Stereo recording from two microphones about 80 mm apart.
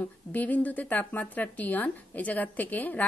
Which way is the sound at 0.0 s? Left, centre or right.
Centre.